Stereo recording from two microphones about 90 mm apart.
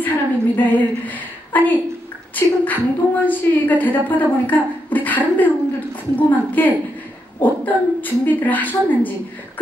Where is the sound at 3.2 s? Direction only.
20° left (ahead or behind).